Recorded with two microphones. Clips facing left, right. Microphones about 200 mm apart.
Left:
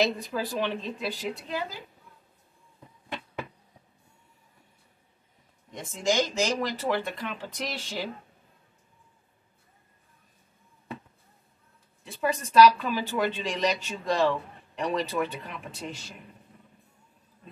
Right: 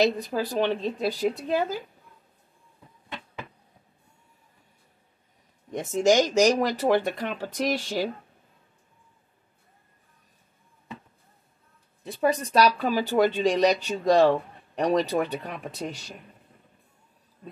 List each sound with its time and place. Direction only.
0.3 s speech: 40° right (ahead or behind)
5.7 s speech: 40° right (ahead or behind)
12.0 s speech: 40° right (ahead or behind)